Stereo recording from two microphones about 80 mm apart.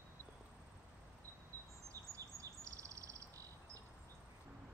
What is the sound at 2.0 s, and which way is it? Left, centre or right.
Bird vocalization, right.